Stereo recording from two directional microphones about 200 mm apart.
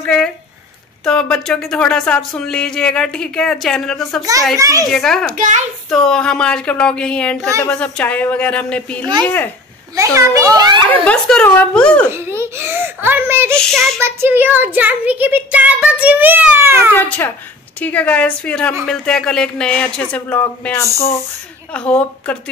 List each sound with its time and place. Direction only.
0.0 s speech: 5° left (ahead or behind)
4.6 s speech: 15° right (ahead or behind)
4.9 s speech: centre (ahead or behind)
5.3 s a child's voice: 40° right (ahead or behind)
5.9 s a woman's voice: 5° left (ahead or behind)
9.9 s speech: 15° right (ahead or behind)
11.1 s speech: 5° left (ahead or behind)
12.1 s speech: 10° right (ahead or behind)
13.6 s speech: centre (ahead or behind)
13.9 s speech: 10° right (ahead or behind)
16.9 s a woman's voice: 10° left (ahead or behind)